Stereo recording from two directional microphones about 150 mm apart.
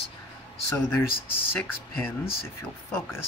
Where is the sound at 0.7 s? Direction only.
15° left (ahead or behind).